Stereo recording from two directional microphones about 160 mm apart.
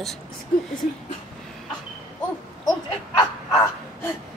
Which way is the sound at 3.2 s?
25° left (ahead or behind).